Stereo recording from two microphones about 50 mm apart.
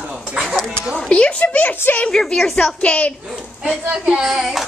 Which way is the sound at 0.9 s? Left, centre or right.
Centre.